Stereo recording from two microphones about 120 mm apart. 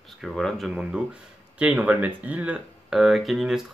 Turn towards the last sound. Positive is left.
turn(degrees=-5)  # may be behind; listen again after turning